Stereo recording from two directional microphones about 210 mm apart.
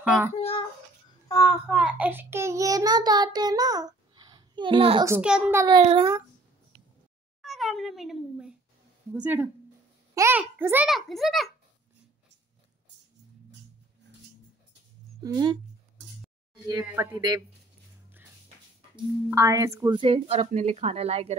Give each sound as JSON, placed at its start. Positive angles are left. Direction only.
{"t": 0.0, "sound": "a child's voice", "side_deg": -5}
{"t": 0.4, "sound": "a sound", "side_deg": 25}
{"t": 1.7, "sound": "child singing", "side_deg": -5}
{"t": 5.0, "sound": "a child's voice", "side_deg": -10}
{"t": 7.4, "sound": "a sound", "side_deg": 0}
{"t": 9.1, "sound": "a child's voice", "side_deg": -10}
{"t": 15.2, "sound": "a child's voice", "side_deg": -15}
{"t": 16.6, "sound": "a child's voice", "side_deg": -15}
{"t": 19.3, "sound": "a woman's voice", "side_deg": -15}